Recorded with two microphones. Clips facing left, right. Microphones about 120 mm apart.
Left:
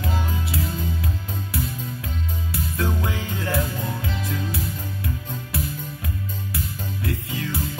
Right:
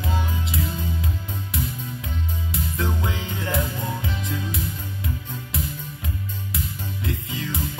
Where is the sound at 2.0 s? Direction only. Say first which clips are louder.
Even; 20° right (ahead or behind).